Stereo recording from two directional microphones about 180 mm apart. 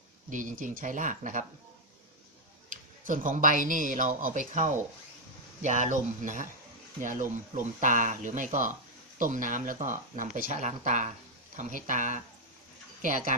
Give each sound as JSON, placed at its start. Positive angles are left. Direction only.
{"t": 0.3, "sound": "speech", "side_deg": -45}
{"t": 2.7, "sound": "speech", "side_deg": -45}